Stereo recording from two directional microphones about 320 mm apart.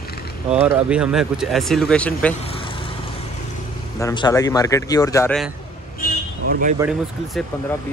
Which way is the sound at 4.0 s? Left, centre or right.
Centre.